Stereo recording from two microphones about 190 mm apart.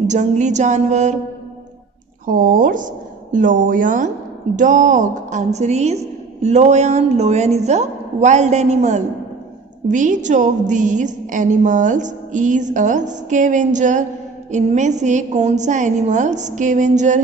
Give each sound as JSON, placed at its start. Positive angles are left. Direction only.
{"t": 0.0, "sound": "a woman's voice", "side_deg": -40}
{"t": 2.2, "sound": "a woman's voice", "side_deg": -45}